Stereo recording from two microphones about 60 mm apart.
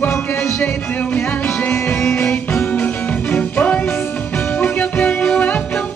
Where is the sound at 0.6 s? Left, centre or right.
Left.